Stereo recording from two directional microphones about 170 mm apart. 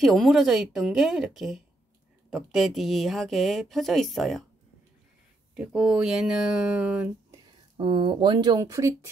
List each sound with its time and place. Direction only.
0.0 s speech: centre (ahead or behind)
5.6 s speech: 5° right (ahead or behind)
7.7 s speech: 30° right (ahead or behind)